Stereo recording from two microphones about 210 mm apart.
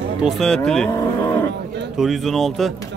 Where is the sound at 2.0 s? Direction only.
Centre (ahead or behind).